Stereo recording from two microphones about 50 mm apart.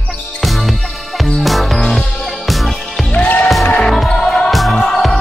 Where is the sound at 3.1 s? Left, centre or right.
Left.